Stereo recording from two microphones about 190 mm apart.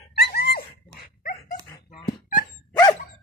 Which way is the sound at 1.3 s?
25° left (ahead or behind).